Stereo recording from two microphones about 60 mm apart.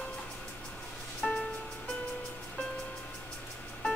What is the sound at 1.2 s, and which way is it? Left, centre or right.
Music, centre.